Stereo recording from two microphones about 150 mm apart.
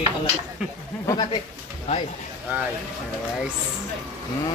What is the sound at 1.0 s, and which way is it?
Speech, 30° left (ahead or behind).